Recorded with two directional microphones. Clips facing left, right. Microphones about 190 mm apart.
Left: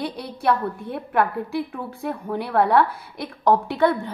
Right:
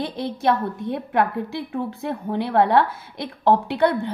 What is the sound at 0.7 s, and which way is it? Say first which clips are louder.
A woman's voice: right 1 dB; 20° right (ahead or behind).